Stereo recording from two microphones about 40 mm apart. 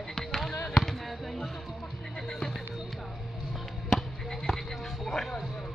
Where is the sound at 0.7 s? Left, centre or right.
Centre.